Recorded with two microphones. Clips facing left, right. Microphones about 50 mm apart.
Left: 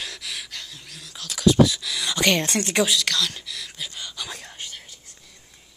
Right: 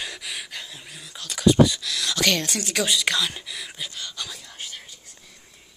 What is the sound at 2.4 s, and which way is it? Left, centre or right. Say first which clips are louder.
Speech: left 4 dB; left.